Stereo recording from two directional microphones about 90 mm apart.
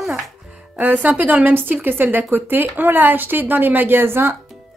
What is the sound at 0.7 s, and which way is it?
Speech, 20° right (ahead or behind).